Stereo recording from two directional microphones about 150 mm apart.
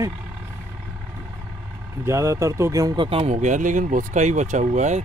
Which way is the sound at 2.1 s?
20° right (ahead or behind).